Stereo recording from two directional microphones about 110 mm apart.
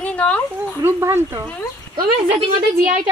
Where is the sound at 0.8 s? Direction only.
25° right (ahead or behind).